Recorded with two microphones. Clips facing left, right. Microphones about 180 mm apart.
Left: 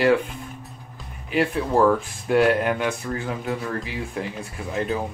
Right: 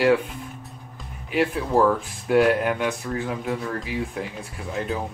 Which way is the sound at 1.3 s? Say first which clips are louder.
Even; centre (ahead or behind).